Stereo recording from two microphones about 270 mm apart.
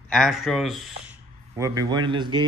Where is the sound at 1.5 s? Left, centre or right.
Centre.